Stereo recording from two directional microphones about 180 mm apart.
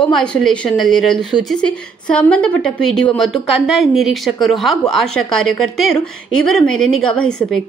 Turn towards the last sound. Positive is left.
turn(degrees=5)  # may be behind; listen again after turning